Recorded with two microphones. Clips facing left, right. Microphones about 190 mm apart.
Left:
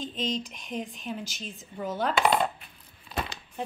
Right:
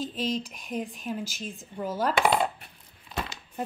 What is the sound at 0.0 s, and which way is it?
Speech, 5° right (ahead or behind).